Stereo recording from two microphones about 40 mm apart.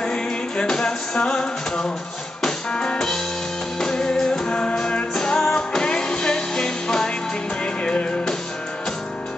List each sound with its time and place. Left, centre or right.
0.0 s music: left